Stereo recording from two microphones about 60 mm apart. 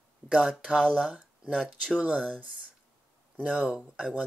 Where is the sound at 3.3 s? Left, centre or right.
Right.